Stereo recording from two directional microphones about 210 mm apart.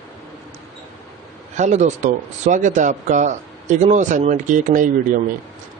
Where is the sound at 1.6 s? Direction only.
35° right (ahead or behind).